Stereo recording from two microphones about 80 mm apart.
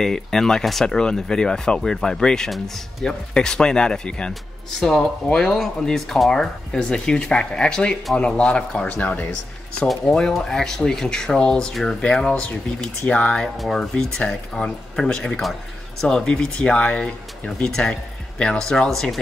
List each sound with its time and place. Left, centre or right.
0.0 s speech: centre; by 9.3 s left
9.8 s speech: centre